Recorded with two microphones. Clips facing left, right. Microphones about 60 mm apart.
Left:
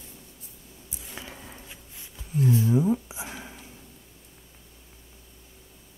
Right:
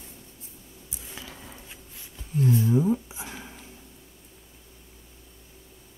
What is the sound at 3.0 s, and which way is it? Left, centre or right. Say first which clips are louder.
Whispering: left 1 dB; centre.